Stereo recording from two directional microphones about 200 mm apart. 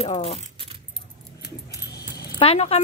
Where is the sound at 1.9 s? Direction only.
50° left (ahead or behind).